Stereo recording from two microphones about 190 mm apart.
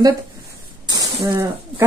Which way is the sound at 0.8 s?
20° right (ahead or behind).